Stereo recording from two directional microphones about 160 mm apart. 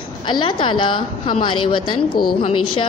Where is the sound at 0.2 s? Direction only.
30° left (ahead or behind).